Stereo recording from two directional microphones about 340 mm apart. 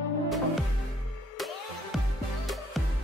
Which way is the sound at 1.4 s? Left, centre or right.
Centre.